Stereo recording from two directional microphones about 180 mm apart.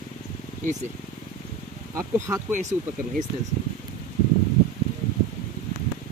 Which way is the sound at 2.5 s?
40° right (ahead or behind).